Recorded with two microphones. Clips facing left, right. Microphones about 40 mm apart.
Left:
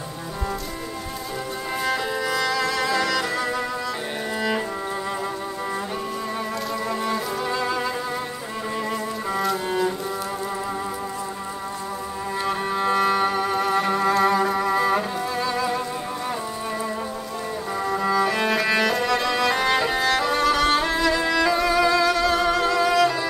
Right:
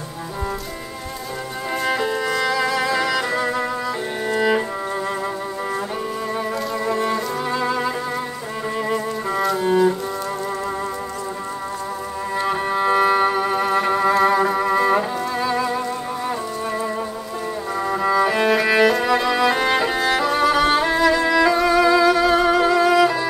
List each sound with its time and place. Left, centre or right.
1.9 s music: centre
4.3 s cello: centre
6.9 s music: centre
12.4 s music: centre
17.7 s music: centre